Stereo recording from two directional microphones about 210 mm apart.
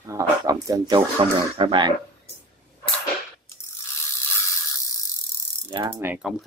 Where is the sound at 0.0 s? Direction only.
15° right (ahead or behind).